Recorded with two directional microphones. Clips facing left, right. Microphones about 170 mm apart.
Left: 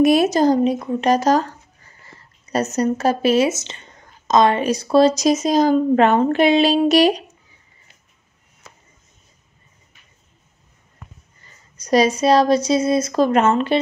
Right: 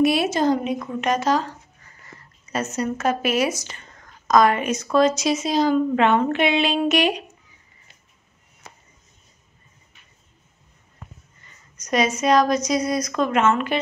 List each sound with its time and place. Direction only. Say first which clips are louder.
0.0 s a woman's voice: left 5 dB; 45° left (ahead or behind)
11.4 s a woman's voice: left 5 dB; 35° left (ahead or behind)